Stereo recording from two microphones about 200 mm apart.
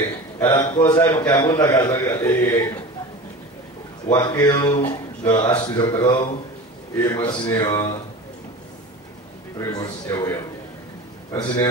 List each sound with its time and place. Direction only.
0.5 s a man's voice: 20° left (ahead or behind)
4.1 s a man's voice: 20° left (ahead or behind)
9.6 s a man's voice: 15° left (ahead or behind)